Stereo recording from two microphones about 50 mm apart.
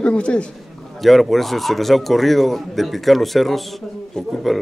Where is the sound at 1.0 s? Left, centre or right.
Centre.